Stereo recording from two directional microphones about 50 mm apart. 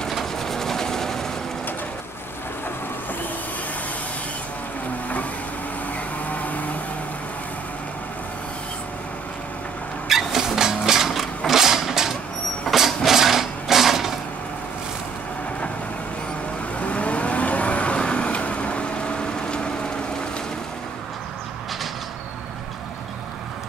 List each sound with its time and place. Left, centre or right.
0.1 s vehicle: centre
6.3 s vehicle: left
10.0 s a sound: centre
16.8 s vehicle: left